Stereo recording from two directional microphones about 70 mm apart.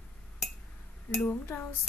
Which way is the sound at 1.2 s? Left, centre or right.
Left.